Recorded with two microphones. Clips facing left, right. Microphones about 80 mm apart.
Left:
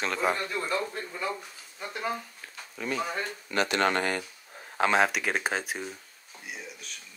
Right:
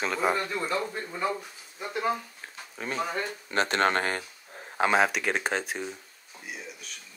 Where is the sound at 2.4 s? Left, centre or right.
Right.